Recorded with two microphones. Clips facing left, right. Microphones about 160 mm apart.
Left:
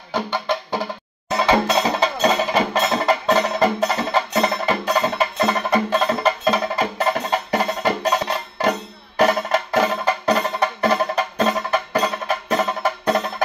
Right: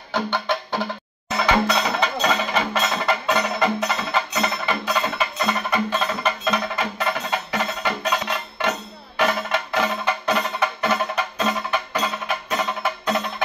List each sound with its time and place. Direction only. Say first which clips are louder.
0.1 s music: left 1 dB; 10° left (ahead or behind)
1.4 s music: left 3 dB; 30° left (ahead or behind)